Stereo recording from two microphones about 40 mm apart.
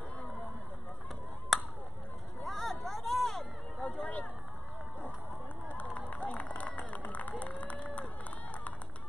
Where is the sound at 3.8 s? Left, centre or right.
Left.